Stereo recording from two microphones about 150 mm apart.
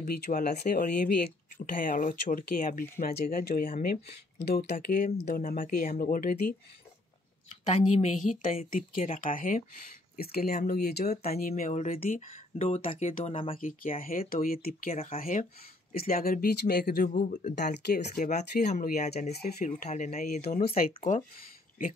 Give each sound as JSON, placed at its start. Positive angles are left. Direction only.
{"t": 0.0, "sound": "speech", "side_deg": 70}
{"t": 0.7, "sound": "speech", "side_deg": 90}
{"t": 7.7, "sound": "speech", "side_deg": 60}
{"t": 10.1, "sound": "speech", "side_deg": 90}
{"t": 11.2, "sound": "speech", "side_deg": 75}
{"t": 12.5, "sound": "speech", "side_deg": 40}
{"t": 13.6, "sound": "speech", "side_deg": 65}
{"t": 15.9, "sound": "speech", "side_deg": 75}
{"t": 20.6, "sound": "speech", "side_deg": 75}